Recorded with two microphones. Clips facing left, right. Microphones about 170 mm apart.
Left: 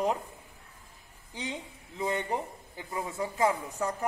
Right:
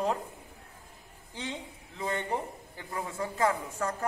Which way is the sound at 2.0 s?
15° left (ahead or behind).